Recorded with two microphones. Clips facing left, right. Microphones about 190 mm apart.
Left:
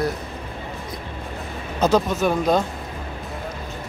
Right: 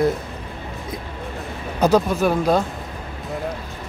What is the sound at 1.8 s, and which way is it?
Speech, 10° right (ahead or behind).